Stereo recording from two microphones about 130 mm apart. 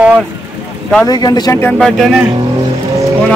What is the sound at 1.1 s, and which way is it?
Speech, 30° left (ahead or behind).